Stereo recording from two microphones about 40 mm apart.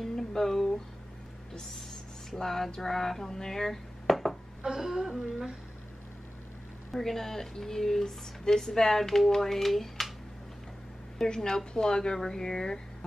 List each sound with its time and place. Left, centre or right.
0.0 s a sound: centre
4.6 s humming: centre
6.9 s speech: centre
11.1 s speech: centre